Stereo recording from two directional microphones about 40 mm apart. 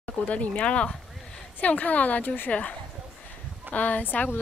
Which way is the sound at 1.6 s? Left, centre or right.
Left.